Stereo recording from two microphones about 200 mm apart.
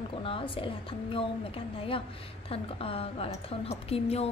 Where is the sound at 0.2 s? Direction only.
25° left (ahead or behind).